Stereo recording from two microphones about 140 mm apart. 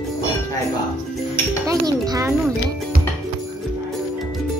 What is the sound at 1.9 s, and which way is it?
Music, 25° right (ahead or behind).